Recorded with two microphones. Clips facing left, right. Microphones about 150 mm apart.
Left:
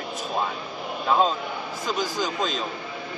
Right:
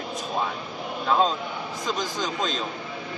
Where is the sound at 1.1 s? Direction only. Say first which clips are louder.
Left 1 dB; 5° left (ahead or behind).